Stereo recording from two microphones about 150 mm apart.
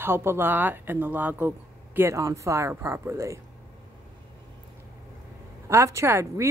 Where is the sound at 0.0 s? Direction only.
15° right (ahead or behind).